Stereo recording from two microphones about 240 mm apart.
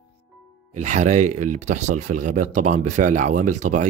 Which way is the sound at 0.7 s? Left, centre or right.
Right.